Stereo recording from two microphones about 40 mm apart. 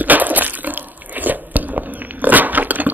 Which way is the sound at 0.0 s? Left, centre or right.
Right.